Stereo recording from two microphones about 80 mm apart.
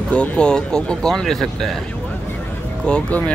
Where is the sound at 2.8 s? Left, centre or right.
Centre.